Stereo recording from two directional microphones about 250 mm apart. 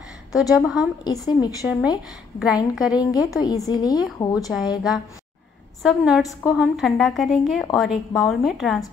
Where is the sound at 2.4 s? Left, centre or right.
Centre.